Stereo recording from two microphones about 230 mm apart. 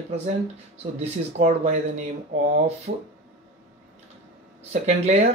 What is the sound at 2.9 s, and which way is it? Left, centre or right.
Speech, right.